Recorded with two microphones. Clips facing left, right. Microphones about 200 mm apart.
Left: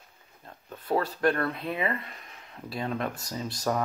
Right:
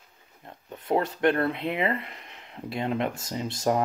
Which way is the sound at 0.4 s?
20° right (ahead or behind).